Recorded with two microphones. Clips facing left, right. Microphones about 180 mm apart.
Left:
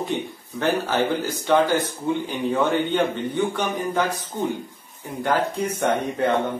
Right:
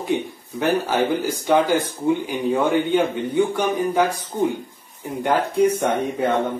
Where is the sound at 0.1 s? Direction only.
10° right (ahead or behind).